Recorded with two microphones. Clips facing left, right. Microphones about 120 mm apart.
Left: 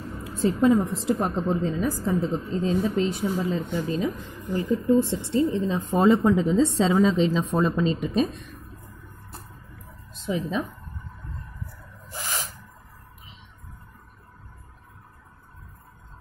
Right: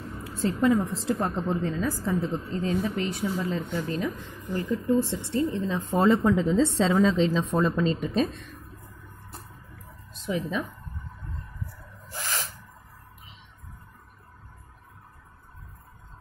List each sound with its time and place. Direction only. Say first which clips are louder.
0.4 s a woman's voice: left 3 dB; 15° left (ahead or behind)
10.2 s a woman's voice: left 2 dB; 20° left (ahead or behind)
12.1 s a sound: left 1 dB; 15° left (ahead or behind)